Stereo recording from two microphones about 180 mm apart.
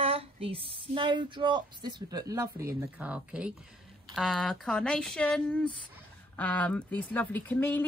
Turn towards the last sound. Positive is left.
turn(degrees=10)  # may be behind; listen again after turning